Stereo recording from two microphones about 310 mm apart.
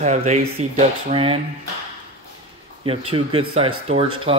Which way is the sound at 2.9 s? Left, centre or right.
Centre.